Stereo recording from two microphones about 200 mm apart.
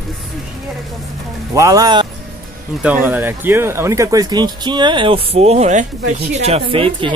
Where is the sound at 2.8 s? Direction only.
10° right (ahead or behind).